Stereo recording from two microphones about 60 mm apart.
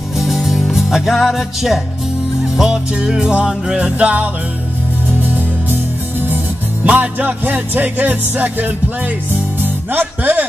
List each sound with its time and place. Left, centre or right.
0.2 s music: centre; by 10.4 s right